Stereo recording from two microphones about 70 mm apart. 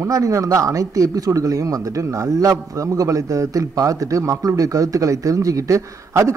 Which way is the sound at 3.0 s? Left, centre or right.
Right.